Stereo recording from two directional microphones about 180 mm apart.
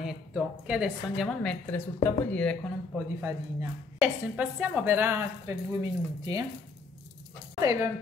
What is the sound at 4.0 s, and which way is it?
A woman's voice, 10° right (ahead or behind).